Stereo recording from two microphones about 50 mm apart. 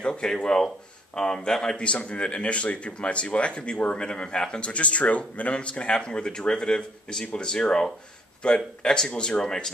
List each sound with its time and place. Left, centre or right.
0.0 s speech: centre
1.8 s speech: left